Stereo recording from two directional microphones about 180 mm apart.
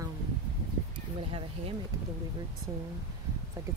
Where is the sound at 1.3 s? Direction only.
30° right (ahead or behind).